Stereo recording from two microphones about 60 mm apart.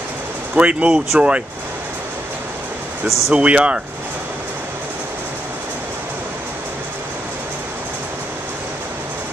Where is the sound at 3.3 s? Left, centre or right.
Centre.